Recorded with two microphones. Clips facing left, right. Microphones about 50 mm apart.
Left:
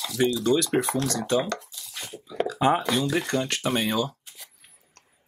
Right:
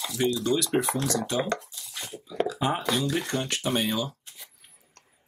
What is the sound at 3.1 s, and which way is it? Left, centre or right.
Speech, left.